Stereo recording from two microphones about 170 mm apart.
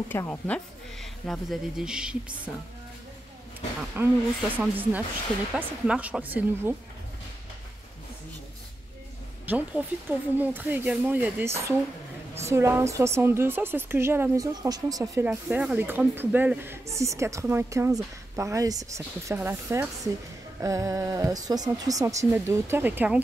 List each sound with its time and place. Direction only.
0.1 s speech: 10° left (ahead or behind); by 2.5 s 5° right (ahead or behind)
3.9 s speech: 10° right (ahead or behind)
9.5 s speech: 10° right (ahead or behind)
15.2 s speech: 5° right (ahead or behind)